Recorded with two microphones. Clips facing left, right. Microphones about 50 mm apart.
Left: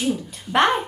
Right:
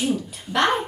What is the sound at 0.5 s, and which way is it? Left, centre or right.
Speech, left.